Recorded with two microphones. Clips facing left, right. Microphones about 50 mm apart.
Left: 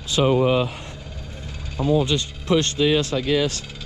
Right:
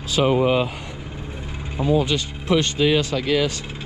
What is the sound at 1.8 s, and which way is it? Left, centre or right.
Speech, right.